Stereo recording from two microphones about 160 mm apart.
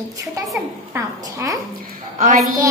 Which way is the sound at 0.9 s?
20° right (ahead or behind).